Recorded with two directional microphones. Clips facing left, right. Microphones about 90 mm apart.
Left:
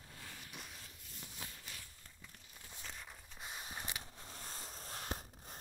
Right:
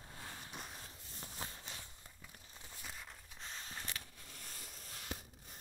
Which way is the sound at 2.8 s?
Centre (ahead or behind).